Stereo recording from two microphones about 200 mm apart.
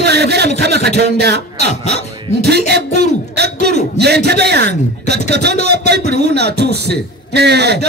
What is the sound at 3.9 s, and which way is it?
A man's voice, 55° right (ahead or behind).